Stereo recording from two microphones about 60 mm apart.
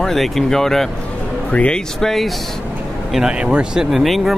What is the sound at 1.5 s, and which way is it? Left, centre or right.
Speech, left.